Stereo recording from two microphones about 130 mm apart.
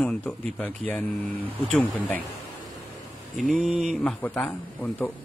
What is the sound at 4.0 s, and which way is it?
Speech, 10° left (ahead or behind).